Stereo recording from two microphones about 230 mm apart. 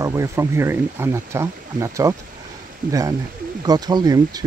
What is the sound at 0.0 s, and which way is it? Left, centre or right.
Speech, centre.